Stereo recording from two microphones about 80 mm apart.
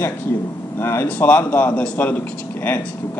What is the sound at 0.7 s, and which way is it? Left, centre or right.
Speech, left.